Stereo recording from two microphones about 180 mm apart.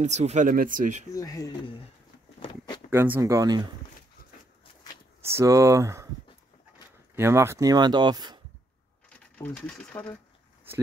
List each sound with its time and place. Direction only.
0.0 s speech: 40° right (ahead or behind)
1.1 s speech: 20° left (ahead or behind)
2.4 s a sound: 25° left (ahead or behind)
2.9 s speech: 15° right (ahead or behind)
5.2 s speech: 15° right (ahead or behind)
7.2 s speech: 15° right (ahead or behind)
9.3 s speech: 10° left (ahead or behind)